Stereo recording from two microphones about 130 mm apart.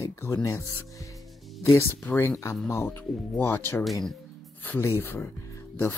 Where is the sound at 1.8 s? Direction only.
20° left (ahead or behind).